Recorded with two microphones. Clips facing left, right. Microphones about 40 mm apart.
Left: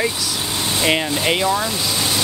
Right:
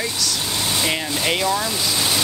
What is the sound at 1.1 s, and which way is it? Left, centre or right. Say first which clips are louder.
Speech: left 2 dB; centre.